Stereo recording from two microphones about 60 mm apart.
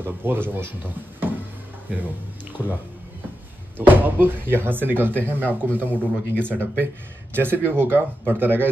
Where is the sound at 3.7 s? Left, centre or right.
Right.